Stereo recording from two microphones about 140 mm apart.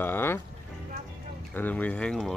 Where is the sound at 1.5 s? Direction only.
10° left (ahead or behind).